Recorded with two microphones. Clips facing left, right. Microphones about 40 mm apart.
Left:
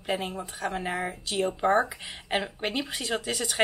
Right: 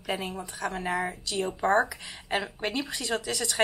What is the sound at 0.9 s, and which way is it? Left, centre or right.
Speech, left.